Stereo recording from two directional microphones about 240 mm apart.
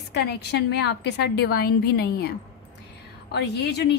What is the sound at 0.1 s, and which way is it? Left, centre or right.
Speech, left.